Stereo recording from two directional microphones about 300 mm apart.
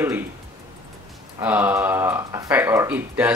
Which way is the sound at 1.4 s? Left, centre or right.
Centre.